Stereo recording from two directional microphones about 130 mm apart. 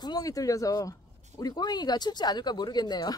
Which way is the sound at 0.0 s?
30° left (ahead or behind).